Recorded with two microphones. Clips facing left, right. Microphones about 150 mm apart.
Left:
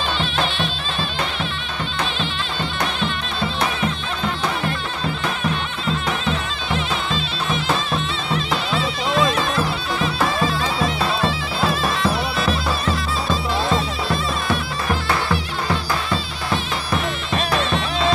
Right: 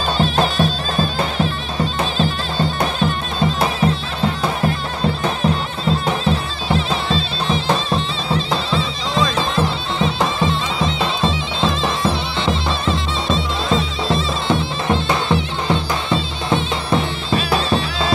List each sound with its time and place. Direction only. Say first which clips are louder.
0.2 s music: right 6 dB; 40° right (ahead or behind)
5.0 s music: right 6 dB; 35° right (ahead or behind)